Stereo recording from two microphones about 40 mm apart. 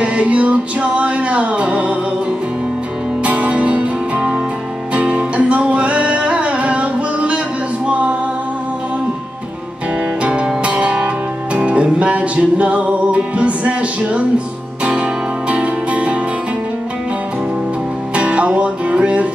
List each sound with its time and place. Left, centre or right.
0.0 s music: right
3.3 s music: right
10.6 s music: right
18.1 s music: right